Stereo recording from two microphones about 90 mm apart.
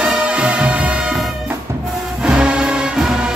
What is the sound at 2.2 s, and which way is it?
Music, 10° right (ahead or behind).